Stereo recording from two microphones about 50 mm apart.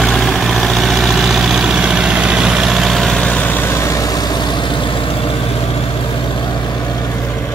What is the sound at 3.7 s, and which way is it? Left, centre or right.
Vehicle, left.